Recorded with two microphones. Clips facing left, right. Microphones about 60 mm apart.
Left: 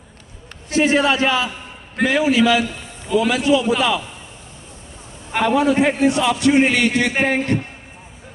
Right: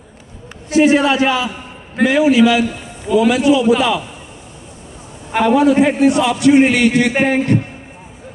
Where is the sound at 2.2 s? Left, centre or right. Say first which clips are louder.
Right 4 dB; centre.